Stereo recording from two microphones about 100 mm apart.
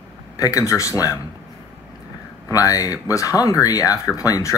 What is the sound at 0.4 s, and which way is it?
Speech, 30° left (ahead or behind).